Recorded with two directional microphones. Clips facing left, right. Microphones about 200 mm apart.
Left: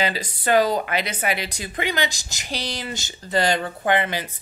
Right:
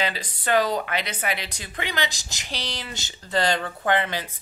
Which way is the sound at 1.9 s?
50° left (ahead or behind).